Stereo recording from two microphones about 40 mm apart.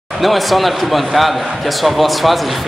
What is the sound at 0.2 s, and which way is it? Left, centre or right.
A man's voice, centre.